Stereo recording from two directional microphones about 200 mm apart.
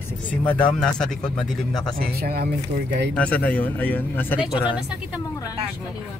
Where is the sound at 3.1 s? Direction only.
5° left (ahead or behind).